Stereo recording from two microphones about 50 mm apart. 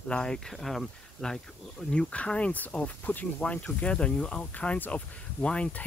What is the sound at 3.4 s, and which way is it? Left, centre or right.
Speech, left.